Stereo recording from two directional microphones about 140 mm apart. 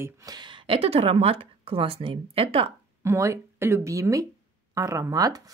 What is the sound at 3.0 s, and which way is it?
Speech, 20° right (ahead or behind).